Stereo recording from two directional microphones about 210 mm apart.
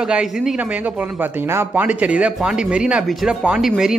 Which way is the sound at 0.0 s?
5° right (ahead or behind).